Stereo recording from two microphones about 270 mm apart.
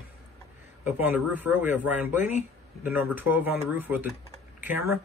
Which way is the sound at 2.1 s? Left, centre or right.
Left.